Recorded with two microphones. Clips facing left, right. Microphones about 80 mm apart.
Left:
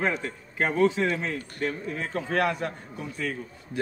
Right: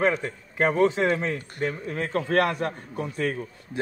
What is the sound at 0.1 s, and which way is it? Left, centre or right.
A man's voice, right.